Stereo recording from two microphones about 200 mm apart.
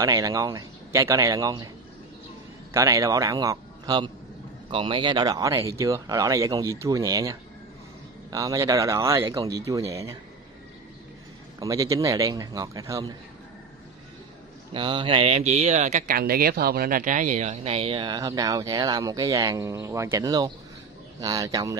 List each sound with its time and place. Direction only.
0.0 s speech: 15° right (ahead or behind)
2.7 s a man's voice: 15° right (ahead or behind)
11.6 s speech: 15° right (ahead or behind)
14.7 s speech: 25° right (ahead or behind)